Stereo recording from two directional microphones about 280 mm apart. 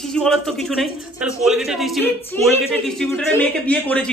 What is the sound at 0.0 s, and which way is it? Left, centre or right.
A man's voice, centre.